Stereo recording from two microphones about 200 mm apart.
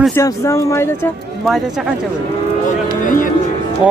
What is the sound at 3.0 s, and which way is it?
Music, 40° left (ahead or behind).